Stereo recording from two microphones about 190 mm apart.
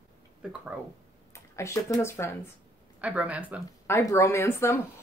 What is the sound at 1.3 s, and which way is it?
Speech, 15° left (ahead or behind).